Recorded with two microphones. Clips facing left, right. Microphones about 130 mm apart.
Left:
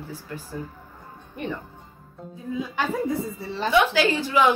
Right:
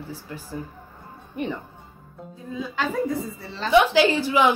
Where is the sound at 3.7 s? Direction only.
15° right (ahead or behind).